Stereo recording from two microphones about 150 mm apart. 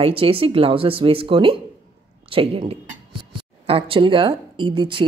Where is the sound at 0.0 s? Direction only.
40° right (ahead or behind).